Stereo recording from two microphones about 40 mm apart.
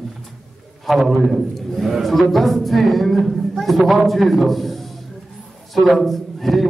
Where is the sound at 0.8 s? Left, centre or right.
Centre.